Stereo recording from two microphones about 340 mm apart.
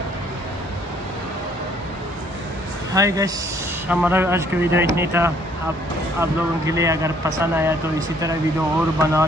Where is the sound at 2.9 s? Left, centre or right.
Centre.